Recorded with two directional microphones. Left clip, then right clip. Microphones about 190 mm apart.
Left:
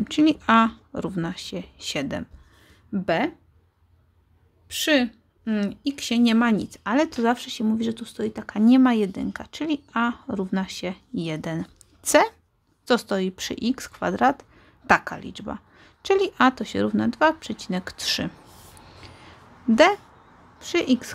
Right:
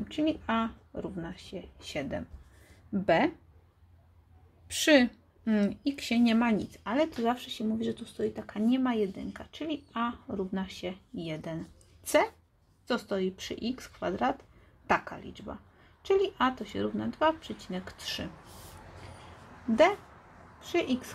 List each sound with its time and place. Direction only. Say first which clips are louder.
0.1 s a woman's voice: left 11 dB; 40° left (ahead or behind)
2.9 s speech: left 2 dB; 15° left (ahead or behind)
4.6 s a woman's voice: left 2 dB; 10° left (ahead or behind); by 18.3 s 45° left (ahead or behind)
19.7 s a woman's voice: left 7 dB; 40° left (ahead or behind)